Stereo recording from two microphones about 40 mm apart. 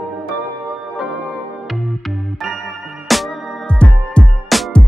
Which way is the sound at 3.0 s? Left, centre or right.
Centre.